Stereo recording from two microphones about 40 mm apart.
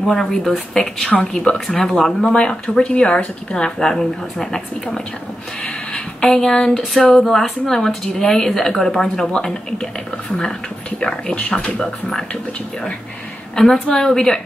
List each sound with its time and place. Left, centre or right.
0.0 s a woman's voice: centre
1.8 s a woman's voice: centre
2.2 s speech: left
3.5 s a woman's voice: centre
6.2 s a woman's voice: centre
11.0 s speech: left
11.7 s a woman's voice: centre
13.6 s a woman's voice: centre